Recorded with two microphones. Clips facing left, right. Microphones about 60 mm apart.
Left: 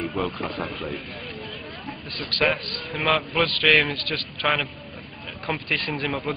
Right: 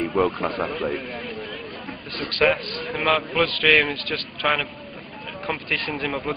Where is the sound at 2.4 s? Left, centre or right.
Centre.